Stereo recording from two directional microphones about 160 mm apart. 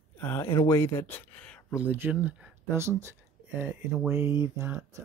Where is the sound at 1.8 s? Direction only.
10° right (ahead or behind).